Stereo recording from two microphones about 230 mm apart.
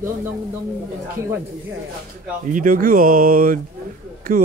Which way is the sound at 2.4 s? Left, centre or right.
Right.